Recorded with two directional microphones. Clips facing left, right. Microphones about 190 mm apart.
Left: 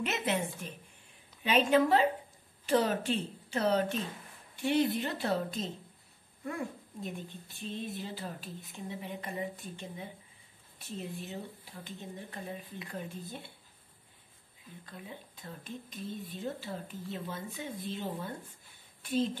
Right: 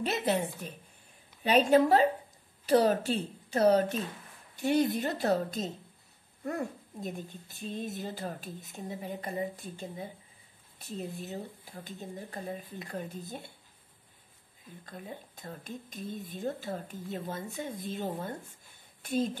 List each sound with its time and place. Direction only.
0.0 s speech: 35° right (ahead or behind)
14.9 s speech: 45° right (ahead or behind)